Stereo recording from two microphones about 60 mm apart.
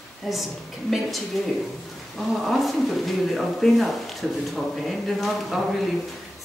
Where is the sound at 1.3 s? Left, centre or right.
Centre.